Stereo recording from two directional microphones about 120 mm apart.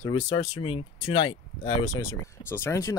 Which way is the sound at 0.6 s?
60° left (ahead or behind).